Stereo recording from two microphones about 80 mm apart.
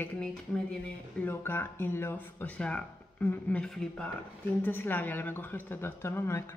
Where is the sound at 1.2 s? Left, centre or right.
Left.